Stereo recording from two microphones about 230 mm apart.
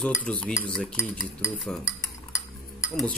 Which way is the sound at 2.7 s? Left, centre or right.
Centre.